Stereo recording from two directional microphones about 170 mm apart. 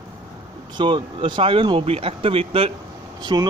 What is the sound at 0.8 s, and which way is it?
A man's voice, 30° right (ahead or behind).